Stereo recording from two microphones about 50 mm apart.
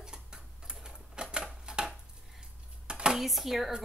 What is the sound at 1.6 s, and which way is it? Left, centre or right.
Chopping, centre.